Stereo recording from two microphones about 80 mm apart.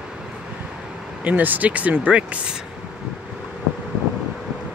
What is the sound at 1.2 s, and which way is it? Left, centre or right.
Speech, right.